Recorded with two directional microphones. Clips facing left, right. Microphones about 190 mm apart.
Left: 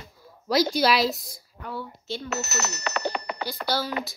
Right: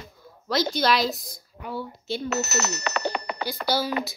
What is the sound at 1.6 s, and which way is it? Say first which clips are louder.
Speech: right 2 dB; 10° right (ahead or behind).